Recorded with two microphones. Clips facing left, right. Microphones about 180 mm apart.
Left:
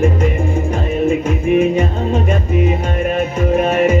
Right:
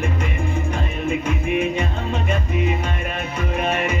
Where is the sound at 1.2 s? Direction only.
45° left (ahead or behind).